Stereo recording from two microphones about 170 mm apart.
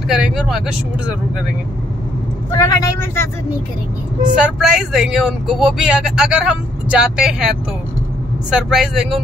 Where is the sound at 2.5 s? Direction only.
20° left (ahead or behind).